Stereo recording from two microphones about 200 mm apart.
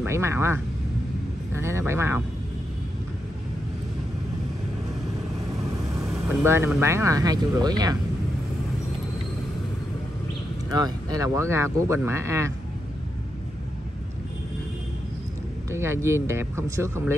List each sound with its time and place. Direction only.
0.0 s speech: 15° right (ahead or behind)
5.9 s speech: 10° right (ahead or behind)
10.7 s speech: 20° right (ahead or behind)
15.7 s speech: 15° right (ahead or behind)